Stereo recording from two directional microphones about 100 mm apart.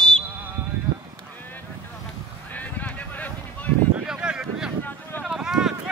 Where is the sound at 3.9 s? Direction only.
10° right (ahead or behind).